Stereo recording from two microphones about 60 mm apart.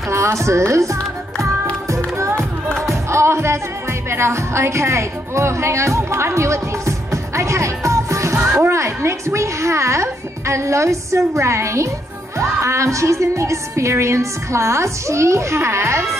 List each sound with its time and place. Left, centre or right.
0.1 s speech: right
2.1 s music: right
4.1 s speech: right
12.4 s music: right